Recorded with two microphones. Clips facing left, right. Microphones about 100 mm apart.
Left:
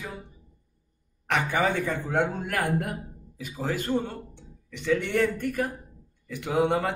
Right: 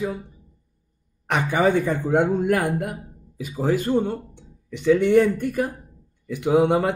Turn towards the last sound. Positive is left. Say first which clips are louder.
# right 6 dB
turn(degrees=-15)  # may be behind; listen again after turning